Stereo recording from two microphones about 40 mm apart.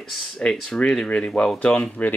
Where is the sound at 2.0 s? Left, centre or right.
Left.